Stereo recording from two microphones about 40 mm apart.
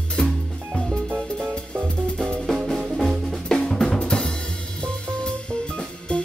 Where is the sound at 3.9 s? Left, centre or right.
Left.